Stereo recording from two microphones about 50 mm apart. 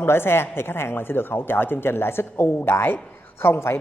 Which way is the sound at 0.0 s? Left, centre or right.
Left.